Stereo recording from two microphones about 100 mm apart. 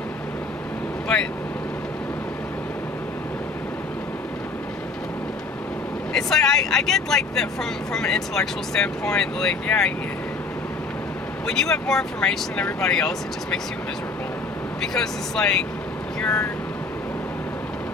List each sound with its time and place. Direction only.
6.1 s speech: 5° left (ahead or behind)
11.4 s speech: 5° left (ahead or behind)
15.0 s speech: 5° left (ahead or behind)
16.2 s vehicle: 20° left (ahead or behind)